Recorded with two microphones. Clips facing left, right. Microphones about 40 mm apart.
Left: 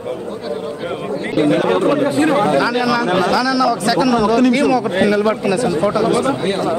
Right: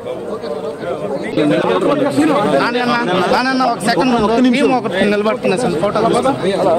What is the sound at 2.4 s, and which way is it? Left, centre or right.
Speech, right.